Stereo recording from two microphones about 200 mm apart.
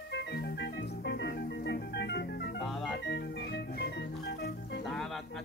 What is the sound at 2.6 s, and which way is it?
Organ, centre (ahead or behind).